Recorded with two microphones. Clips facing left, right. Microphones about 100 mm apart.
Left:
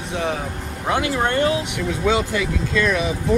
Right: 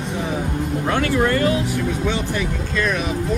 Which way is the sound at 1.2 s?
25° left (ahead or behind).